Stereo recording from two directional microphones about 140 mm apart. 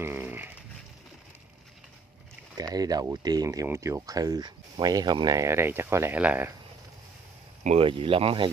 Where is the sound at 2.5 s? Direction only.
25° right (ahead or behind).